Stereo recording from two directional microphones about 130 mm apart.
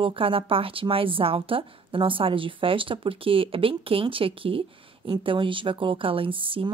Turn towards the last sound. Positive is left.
turn(degrees=-45)  # may be behind; listen again after turning